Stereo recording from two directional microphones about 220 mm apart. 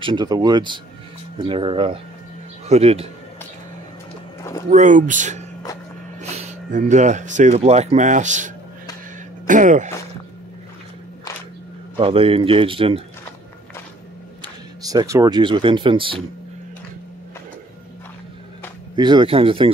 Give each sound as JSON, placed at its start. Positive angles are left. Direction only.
{"t": 0.0, "sound": "speech", "side_deg": -20}
{"t": 4.6, "sound": "speech", "side_deg": -35}
{"t": 12.0, "sound": "speech", "side_deg": -25}
{"t": 14.8, "sound": "speech", "side_deg": -15}
{"t": 18.9, "sound": "speech", "side_deg": -20}